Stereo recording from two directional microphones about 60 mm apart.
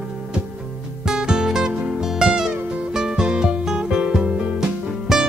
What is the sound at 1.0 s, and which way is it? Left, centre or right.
Music, centre.